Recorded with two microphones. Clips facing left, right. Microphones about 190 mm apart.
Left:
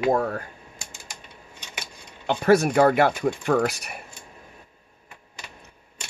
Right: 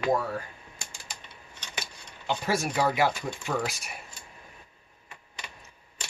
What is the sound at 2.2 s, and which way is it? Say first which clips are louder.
Speech: left 10 dB; 60° left (ahead or behind).